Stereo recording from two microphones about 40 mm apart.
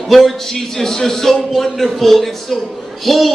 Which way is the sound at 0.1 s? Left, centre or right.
Centre.